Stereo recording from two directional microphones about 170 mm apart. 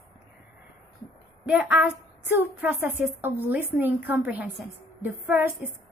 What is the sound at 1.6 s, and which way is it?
A woman's voice, 5° right (ahead or behind).